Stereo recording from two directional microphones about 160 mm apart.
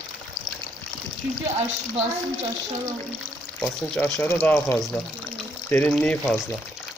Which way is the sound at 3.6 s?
5° left (ahead or behind).